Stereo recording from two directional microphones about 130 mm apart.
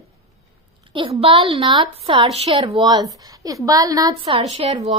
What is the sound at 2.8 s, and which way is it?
Speech, 35° right (ahead or behind).